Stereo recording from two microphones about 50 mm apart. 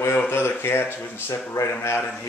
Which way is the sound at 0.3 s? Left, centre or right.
Left.